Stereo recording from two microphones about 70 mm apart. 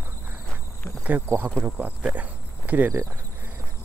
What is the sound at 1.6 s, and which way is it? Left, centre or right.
Speech, centre.